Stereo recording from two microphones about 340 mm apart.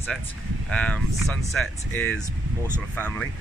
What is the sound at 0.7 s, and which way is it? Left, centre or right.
Speech, centre.